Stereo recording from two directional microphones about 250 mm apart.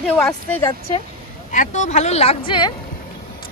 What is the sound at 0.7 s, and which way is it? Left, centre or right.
Speech, left.